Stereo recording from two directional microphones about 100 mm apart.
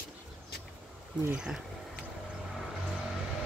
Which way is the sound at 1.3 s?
5° right (ahead or behind).